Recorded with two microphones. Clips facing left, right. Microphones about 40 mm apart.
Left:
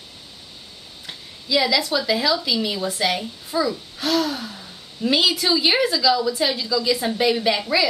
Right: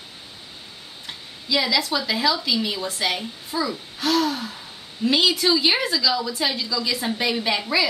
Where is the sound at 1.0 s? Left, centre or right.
Centre.